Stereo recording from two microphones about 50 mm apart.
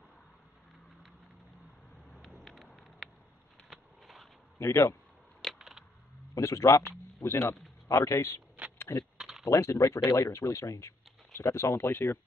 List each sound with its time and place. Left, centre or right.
2.4 s a sound: centre
4.6 s speech: left
5.6 s a sound: centre
6.3 s speech: left
7.2 s speech: left
7.9 s speech: left
8.6 s a sound: right
9.5 s speech: left
11.9 s speech: left